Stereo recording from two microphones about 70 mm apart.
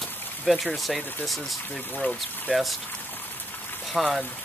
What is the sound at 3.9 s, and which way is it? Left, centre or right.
Speech, centre.